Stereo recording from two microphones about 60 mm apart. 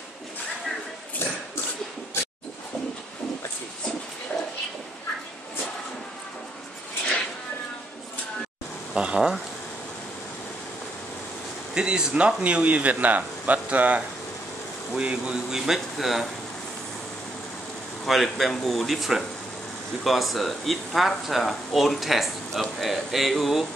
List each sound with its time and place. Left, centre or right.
2.2 s a sound: left
8.9 s speech: centre
11.7 s speech: centre
18.0 s speech: centre